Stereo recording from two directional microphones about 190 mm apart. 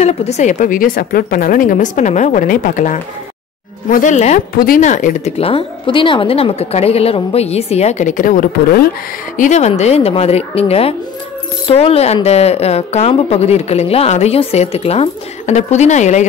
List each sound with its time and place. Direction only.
0.0 s a woman's voice: 35° left (ahead or behind)